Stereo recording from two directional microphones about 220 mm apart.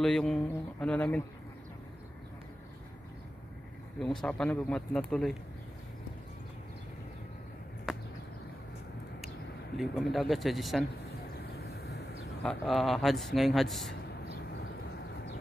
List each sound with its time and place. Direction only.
0.0 s a man's voice: centre (ahead or behind)
4.0 s a man's voice: 5° left (ahead or behind)
7.9 s a sound: centre (ahead or behind)
9.8 s a man's voice: centre (ahead or behind)
11.5 s vehicle: 45° left (ahead or behind)
12.4 s a man's voice: centre (ahead or behind)